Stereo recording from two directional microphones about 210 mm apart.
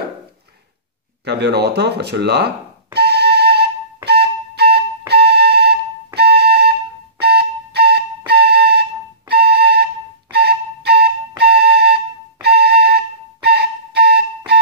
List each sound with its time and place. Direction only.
1.2 s a sound: 50° right (ahead or behind)
6.1 s flute: 50° right (ahead or behind)
7.2 s music: 50° right (ahead or behind)